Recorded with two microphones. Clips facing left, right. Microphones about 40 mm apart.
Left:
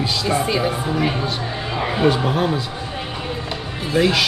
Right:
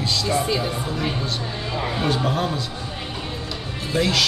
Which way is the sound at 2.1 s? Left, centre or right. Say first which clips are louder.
Left 3 dB; centre.